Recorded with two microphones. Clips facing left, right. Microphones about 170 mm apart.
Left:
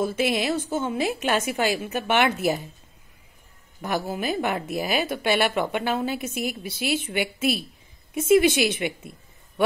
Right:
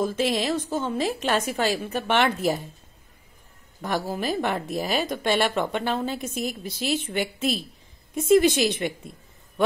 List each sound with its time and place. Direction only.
0.0 s a woman's voice: 5° left (ahead or behind)
3.8 s speech: 5° left (ahead or behind)